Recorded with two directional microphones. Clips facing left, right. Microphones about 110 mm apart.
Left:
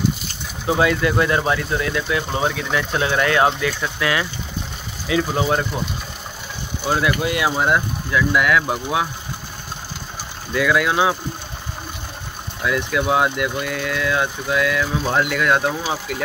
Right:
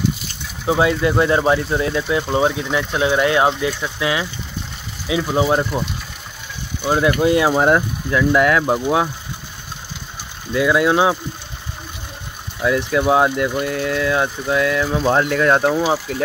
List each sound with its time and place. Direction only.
0.7 s speech: 20° right (ahead or behind)
7.0 s speech: 30° right (ahead or behind)
10.5 s speech: 25° right (ahead or behind)
12.6 s speech: 30° right (ahead or behind)